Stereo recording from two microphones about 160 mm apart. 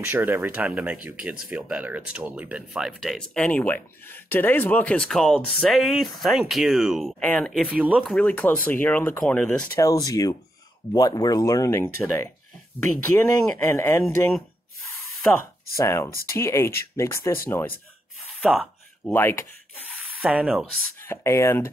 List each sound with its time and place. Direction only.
0.0 s speech: 10° right (ahead or behind); by 14.0 s 15° left (ahead or behind)
15.3 s speech: 20° left (ahead or behind)
18.4 s a sound: centre (ahead or behind)
19.1 s speech: 15° left (ahead or behind)
20.2 s speech: 10° right (ahead or behind)
21.1 s speech: 20° left (ahead or behind)